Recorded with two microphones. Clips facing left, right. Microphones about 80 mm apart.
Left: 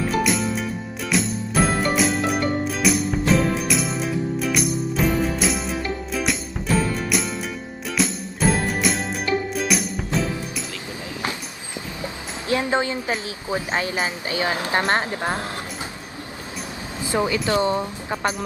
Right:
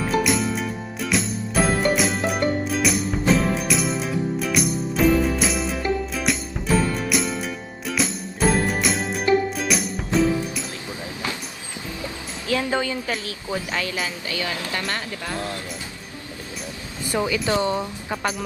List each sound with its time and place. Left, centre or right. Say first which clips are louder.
0.2 s music: even; centre
12.0 s speech: left 1 dB; left
17.1 s speech: left 1 dB; left
18.1 s speech: left 2 dB; centre